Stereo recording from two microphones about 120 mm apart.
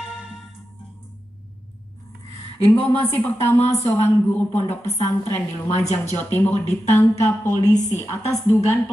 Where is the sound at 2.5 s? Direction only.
50° left (ahead or behind).